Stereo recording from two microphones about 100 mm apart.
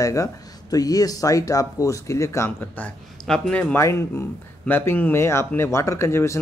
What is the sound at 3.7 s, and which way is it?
Speech, 25° left (ahead or behind).